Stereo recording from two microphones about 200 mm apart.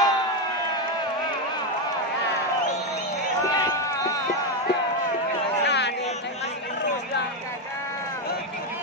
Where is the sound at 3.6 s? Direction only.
15° left (ahead or behind).